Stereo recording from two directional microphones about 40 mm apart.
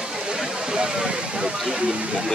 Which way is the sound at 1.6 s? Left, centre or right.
Right.